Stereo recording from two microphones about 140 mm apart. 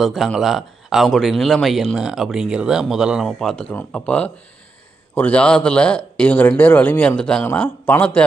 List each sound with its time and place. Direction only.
0.0 s speech: centre (ahead or behind)